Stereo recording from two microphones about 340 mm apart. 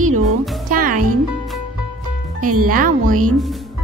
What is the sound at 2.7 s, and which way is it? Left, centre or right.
Speech, right.